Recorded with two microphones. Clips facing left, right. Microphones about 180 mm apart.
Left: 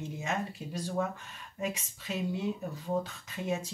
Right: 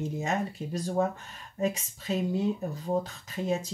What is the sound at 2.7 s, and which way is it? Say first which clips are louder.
Speech: right 3 dB; 35° right (ahead or behind).